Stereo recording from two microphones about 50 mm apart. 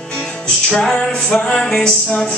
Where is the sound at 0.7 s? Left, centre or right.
Centre.